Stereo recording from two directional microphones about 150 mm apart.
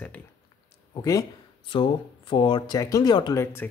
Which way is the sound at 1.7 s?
35° left (ahead or behind).